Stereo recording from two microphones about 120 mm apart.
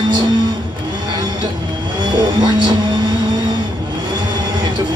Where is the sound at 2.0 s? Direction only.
35° right (ahead or behind).